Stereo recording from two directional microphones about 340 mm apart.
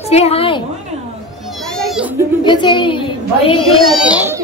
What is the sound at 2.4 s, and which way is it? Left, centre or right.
A woman's voice, centre.